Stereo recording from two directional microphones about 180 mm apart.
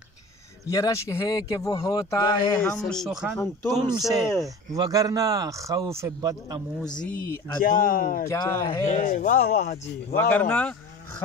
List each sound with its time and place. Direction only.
0.7 s speech: 20° left (ahead or behind); by 3.3 s centre (ahead or behind)
3.7 s a man's voice: 20° right (ahead or behind)
4.0 s speech: centre (ahead or behind)
4.7 s a man's voice: 20° right (ahead or behind)
6.8 s speech: 5° left (ahead or behind)
7.6 s speech: 50° left (ahead or behind)
8.3 s speech: 15° left (ahead or behind)
8.8 s speech: 45° left (ahead or behind)
10.1 s speech: 10° left (ahead or behind)